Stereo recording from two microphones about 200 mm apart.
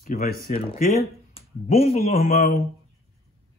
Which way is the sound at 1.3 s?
30° left (ahead or behind).